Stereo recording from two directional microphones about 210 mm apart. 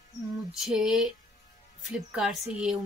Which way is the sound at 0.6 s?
Centre (ahead or behind).